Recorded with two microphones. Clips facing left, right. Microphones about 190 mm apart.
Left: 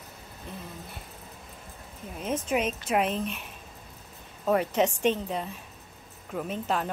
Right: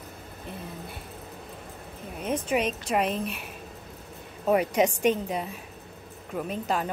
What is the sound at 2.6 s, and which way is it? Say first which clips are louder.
Speech: even; 5° left (ahead or behind).